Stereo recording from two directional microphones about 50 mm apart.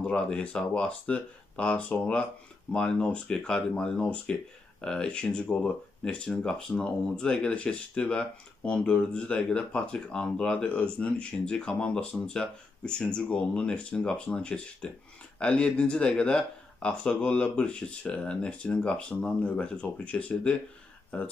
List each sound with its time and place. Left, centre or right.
0.0 s speech: left